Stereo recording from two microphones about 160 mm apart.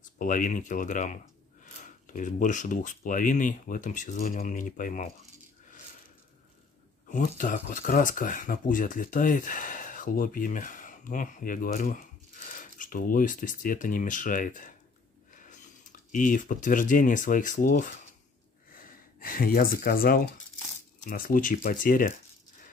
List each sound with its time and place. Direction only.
0.2 s speech: 55° left (ahead or behind)
7.1 s speech: 55° left (ahead or behind)